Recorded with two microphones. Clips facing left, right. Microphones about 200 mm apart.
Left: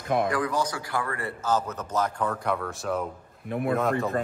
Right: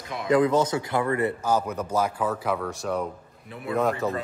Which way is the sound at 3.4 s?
55° left (ahead or behind).